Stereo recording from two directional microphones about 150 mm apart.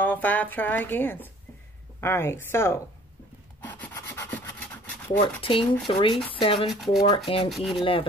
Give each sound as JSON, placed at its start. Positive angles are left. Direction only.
{"t": 0.0, "sound": "speech", "side_deg": 10}
{"t": 3.6, "sound": "rub", "side_deg": 15}
{"t": 5.2, "sound": "speech", "side_deg": 35}
{"t": 6.7, "sound": "speech", "side_deg": 0}
{"t": 7.8, "sound": "speech", "side_deg": 35}